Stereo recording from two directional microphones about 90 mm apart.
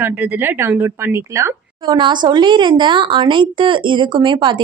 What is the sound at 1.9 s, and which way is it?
A woman's voice, 55° right (ahead or behind).